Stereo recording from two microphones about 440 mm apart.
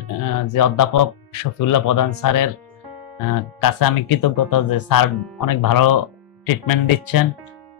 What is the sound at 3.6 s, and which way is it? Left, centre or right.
Speech, left.